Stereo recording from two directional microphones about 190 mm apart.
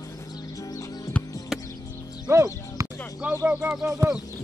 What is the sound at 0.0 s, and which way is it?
Music, 15° left (ahead or behind).